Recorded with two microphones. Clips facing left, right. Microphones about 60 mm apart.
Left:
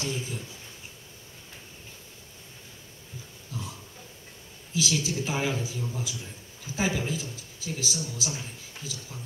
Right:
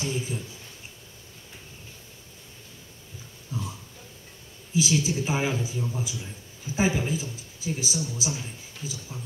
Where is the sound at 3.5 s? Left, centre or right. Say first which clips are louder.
Right 4 dB; right.